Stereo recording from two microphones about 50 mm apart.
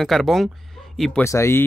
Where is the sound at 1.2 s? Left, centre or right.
Left.